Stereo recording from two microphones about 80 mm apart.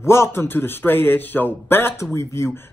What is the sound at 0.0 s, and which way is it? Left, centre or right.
Speech, left.